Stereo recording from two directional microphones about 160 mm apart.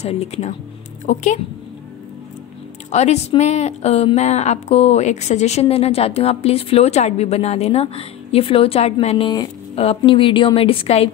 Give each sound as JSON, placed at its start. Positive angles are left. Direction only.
{"t": 0.0, "sound": "a woman's voice", "side_deg": 40}
{"t": 2.9, "sound": "a woman's voice", "side_deg": 45}